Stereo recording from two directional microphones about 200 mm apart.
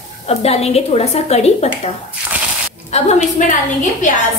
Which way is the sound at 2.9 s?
35° left (ahead or behind).